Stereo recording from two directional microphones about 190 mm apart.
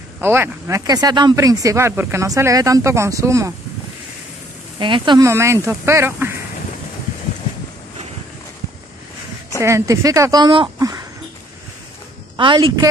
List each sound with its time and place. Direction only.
0.2 s speech: 10° right (ahead or behind)
4.7 s speech: 25° right (ahead or behind)
9.6 s speech: 15° right (ahead or behind)
12.4 s a woman's voice: 25° right (ahead or behind)